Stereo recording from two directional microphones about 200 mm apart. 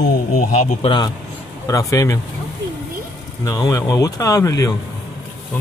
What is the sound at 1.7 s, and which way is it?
Speech, 15° left (ahead or behind).